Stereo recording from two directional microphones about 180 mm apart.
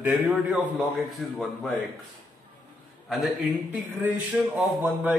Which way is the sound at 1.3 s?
5° left (ahead or behind).